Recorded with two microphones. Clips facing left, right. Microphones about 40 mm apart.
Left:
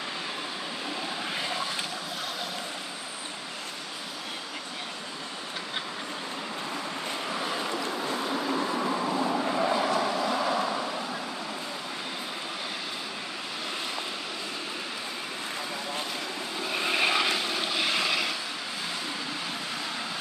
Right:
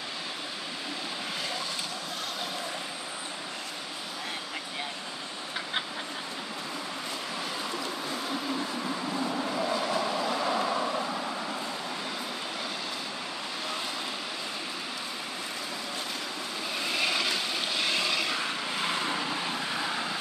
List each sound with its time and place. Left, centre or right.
8.5 s vehicle: left
9.8 s vehicle: centre
16.7 s vehicle: left
17.5 s vehicle: centre